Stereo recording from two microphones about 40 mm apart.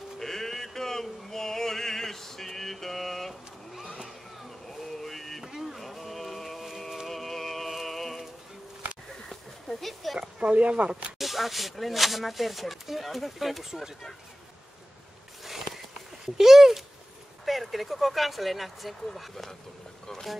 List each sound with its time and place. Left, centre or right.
0.2 s male singing: centre
4.6 s a sound: centre
5.4 s a sound: centre
7.1 s music: centre
9.2 s a sound: centre
9.8 s speech: centre
10.1 s speech: right
11.1 s speech: centre
15.4 s walk: centre
16.3 s speech: centre